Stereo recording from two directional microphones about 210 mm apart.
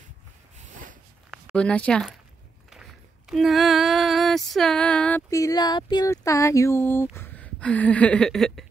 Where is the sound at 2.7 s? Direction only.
Centre (ahead or behind).